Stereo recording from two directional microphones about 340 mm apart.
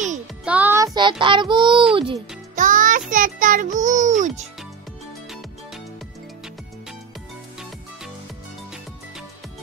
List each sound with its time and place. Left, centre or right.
0.5 s music: centre
1.2 s child singing: centre
2.0 s music: centre